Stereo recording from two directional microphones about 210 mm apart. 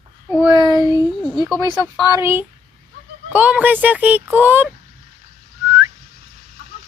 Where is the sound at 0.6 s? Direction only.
20° right (ahead or behind).